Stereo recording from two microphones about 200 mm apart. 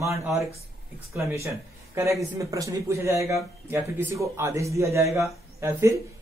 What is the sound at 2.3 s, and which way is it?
A man's voice, 15° right (ahead or behind).